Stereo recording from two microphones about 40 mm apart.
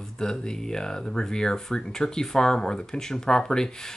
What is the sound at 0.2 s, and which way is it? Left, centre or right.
Speech, centre.